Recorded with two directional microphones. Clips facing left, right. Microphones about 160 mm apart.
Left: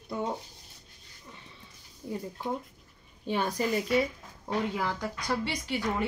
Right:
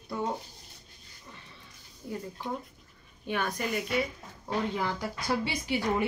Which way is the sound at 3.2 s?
30° left (ahead or behind).